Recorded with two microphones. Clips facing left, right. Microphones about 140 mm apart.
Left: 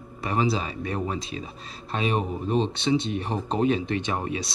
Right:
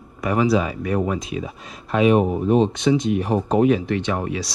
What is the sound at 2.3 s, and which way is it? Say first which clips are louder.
Speech: right 7 dB; 65° right (ahead or behind).